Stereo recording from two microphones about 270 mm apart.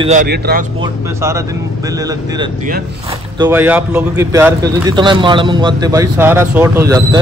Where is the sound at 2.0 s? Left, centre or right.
Centre.